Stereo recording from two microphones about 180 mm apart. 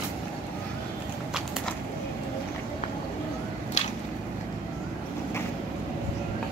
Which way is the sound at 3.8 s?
40° left (ahead or behind).